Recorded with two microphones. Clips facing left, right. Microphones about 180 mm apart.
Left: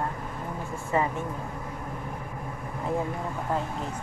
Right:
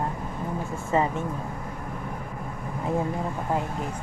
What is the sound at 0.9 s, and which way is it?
Speech, 25° right (ahead or behind).